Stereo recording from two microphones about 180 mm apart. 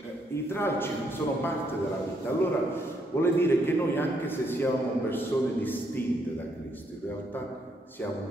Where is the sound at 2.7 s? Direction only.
10° left (ahead or behind).